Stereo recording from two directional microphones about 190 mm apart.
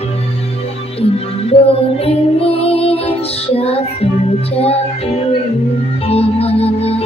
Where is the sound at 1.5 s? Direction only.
30° left (ahead or behind).